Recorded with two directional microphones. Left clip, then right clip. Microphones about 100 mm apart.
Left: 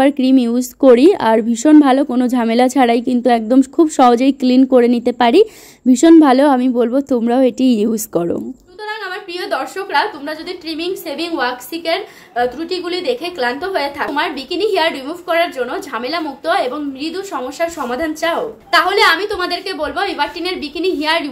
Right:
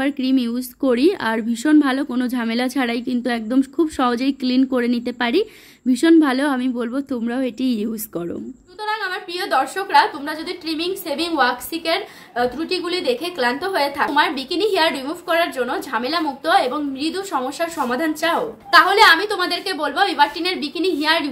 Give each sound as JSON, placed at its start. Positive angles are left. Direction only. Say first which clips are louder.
{"t": 0.0, "sound": "a woman's voice", "louder": "left 8 dB", "side_deg": 35}
{"t": 4.6, "sound": "a woman's voice", "louder": "left 10 dB", "side_deg": 25}
{"t": 8.8, "sound": "a woman's voice", "louder": "right 1 dB", "side_deg": 0}